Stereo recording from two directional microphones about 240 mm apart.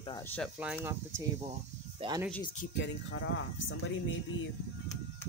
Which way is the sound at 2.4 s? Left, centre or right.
Left.